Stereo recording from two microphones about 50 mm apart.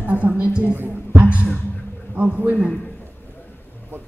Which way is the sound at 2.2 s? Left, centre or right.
Right.